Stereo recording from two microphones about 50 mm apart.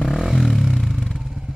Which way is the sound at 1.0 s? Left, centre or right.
Centre.